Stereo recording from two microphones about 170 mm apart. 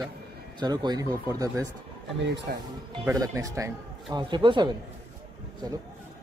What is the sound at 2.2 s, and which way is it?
Speech, 90° right.